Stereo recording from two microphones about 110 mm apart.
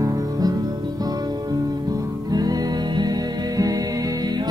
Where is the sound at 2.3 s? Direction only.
35° right (ahead or behind).